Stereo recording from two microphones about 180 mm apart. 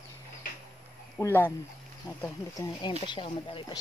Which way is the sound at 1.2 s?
10° left (ahead or behind).